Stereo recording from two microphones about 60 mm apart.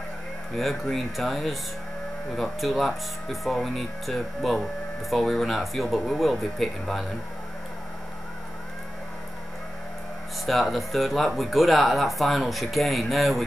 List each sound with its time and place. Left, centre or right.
0.8 s speech: centre
10.4 s speech: centre